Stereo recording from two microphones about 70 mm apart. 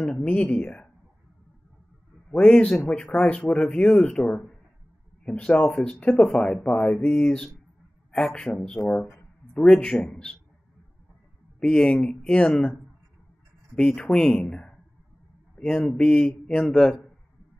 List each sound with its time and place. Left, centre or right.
0.2 s speech: centre
2.3 s speech: centre
11.6 s speech: centre
13.7 s speech: centre
14.5 s a sound: centre
15.5 s speech: centre